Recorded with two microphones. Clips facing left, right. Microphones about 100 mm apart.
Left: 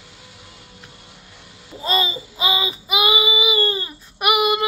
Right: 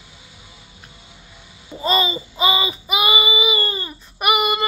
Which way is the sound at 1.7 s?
Centre (ahead or behind).